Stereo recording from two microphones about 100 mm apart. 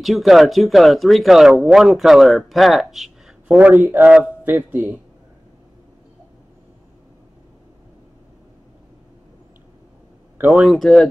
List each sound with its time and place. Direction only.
0.0 s speech: centre (ahead or behind)
3.5 s a man's voice: 20° right (ahead or behind)
10.3 s speech: 15° right (ahead or behind)
10.8 s speech: 5° left (ahead or behind)